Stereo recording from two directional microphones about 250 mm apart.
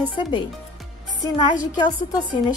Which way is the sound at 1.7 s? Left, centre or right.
Centre.